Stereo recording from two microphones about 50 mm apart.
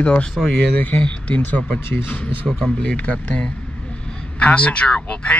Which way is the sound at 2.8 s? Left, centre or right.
Left.